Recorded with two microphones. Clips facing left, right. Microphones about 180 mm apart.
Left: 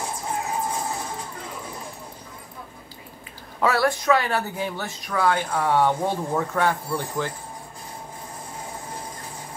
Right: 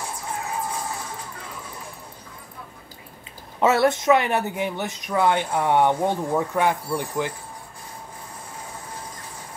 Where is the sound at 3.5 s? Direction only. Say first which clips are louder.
Right 3 dB; 20° right (ahead or behind).